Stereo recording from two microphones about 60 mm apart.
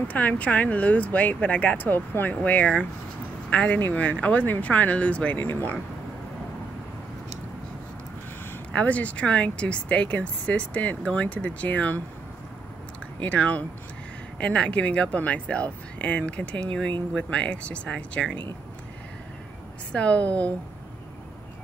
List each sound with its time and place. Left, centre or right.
0.1 s speech: left
8.7 s speech: left
13.2 s speech: left
19.9 s speech: left